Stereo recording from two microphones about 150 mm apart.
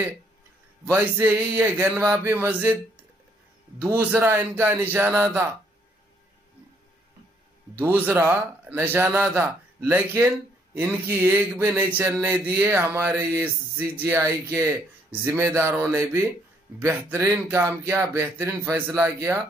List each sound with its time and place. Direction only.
0.8 s speech: 15° right (ahead or behind)
3.8 s speech: 15° right (ahead or behind)
7.7 s speech: 15° right (ahead or behind)